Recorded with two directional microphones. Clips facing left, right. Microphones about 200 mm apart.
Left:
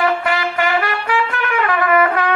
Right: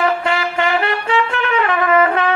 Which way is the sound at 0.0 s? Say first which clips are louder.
Even; 25° right (ahead or behind).